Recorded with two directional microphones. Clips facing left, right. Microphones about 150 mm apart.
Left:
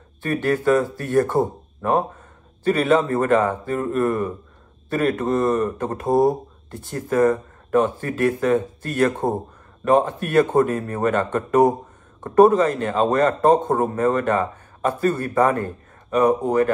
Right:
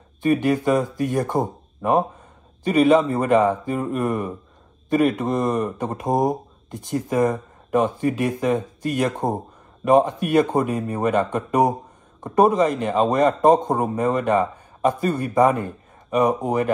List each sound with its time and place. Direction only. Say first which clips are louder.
0.2 s a man's voice: right 2 dB; 15° right (ahead or behind)